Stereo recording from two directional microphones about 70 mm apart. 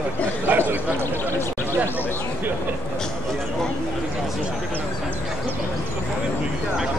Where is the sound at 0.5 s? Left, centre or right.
Right.